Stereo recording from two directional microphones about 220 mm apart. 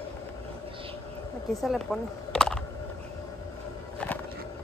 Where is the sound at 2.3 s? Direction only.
Centre (ahead or behind).